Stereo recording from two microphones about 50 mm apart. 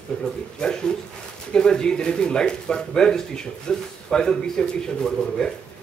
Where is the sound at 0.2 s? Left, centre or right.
Centre.